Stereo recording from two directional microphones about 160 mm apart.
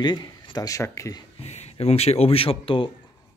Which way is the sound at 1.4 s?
40° left (ahead or behind).